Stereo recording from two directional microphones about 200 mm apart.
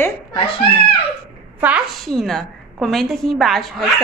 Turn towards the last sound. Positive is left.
turn(degrees=0)  # may be behind; listen again after turning